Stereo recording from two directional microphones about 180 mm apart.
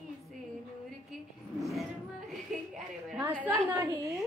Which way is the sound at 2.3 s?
5° right (ahead or behind).